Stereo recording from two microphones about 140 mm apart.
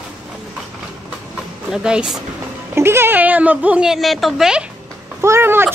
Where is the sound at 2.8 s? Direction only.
15° right (ahead or behind).